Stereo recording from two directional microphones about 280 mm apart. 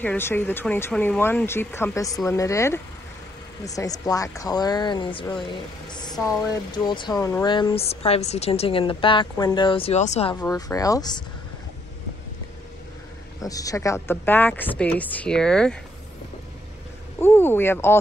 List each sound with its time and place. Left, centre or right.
0.0 s a woman's voice: centre
10.4 s speech: centre
13.4 s speech: centre
17.2 s speech: centre